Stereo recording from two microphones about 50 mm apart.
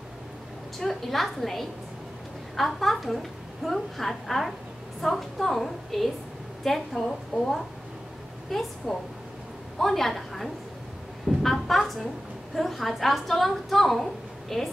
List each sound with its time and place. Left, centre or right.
0.7 s a woman's voice: centre
11.2 s a sound: centre
12.5 s a woman's voice: centre